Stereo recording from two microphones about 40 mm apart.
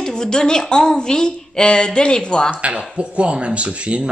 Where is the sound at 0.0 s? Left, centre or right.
Centre.